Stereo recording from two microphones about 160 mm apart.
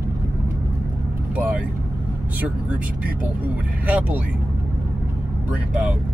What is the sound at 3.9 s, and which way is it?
Speech, 10° right (ahead or behind).